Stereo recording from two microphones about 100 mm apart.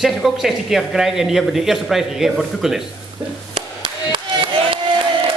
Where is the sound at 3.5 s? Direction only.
60° right (ahead or behind).